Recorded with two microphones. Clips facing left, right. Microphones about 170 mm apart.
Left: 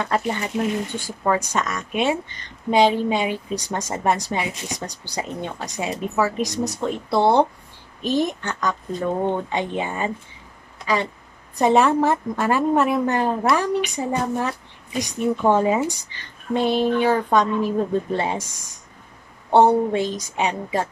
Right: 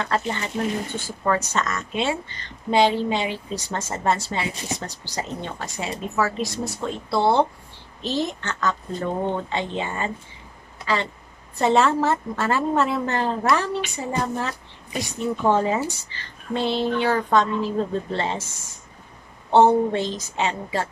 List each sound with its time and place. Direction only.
0.0 s a woman's voice: 15° left (ahead or behind)
11.5 s a woman's voice: 15° left (ahead or behind)